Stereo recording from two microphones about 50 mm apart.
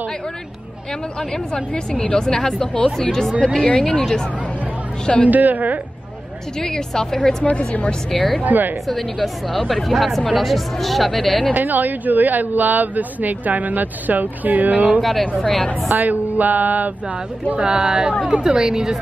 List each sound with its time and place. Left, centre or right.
1.5 s a woman's voice: centre
5.0 s a woman's voice: left
5.3 s speech: right
6.6 s speech: centre
7.4 s a woman's voice: left
8.1 s speech: centre
8.5 s speech: right
8.8 s a woman's voice: centre
11.5 s speech: right
15.0 s a woman's voice: centre
16.0 s speech: right; by 18.9 s centre